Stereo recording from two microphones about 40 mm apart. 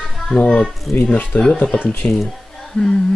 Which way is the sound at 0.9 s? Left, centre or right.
Left.